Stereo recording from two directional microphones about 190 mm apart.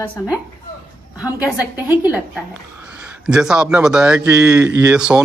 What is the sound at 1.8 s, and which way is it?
Speech, 10° right (ahead or behind).